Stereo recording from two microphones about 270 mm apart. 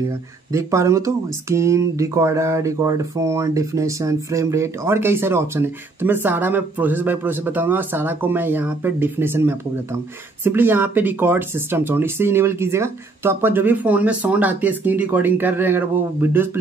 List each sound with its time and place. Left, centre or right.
0.5 s speech: centre